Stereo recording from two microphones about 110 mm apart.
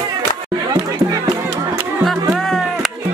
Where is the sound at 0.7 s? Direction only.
35° right (ahead or behind).